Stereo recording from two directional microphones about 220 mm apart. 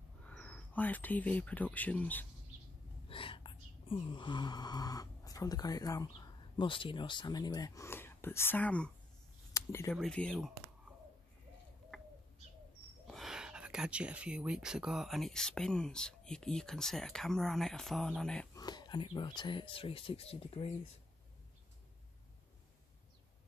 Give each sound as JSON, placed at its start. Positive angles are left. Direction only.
{"t": 0.3, "sound": "speech", "side_deg": 5}
{"t": 3.1, "sound": "whispering", "side_deg": 25}
{"t": 3.8, "sound": "speech", "side_deg": 20}
{"t": 9.5, "sound": "a sound", "side_deg": 15}
{"t": 9.9, "sound": "speech", "side_deg": 5}
{"t": 11.9, "sound": "bird", "side_deg": 5}
{"t": 13.0, "sound": "speech", "side_deg": 0}
{"t": 18.5, "sound": "speech", "side_deg": 20}